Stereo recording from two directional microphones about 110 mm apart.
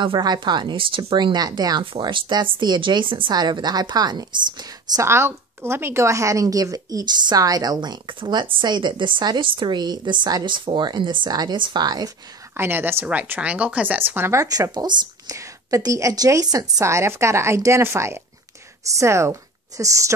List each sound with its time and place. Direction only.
0.0 s a woman's voice: 45° right (ahead or behind)
5.0 s a woman's voice: 25° right (ahead or behind)
12.5 s speech: 20° right (ahead or behind)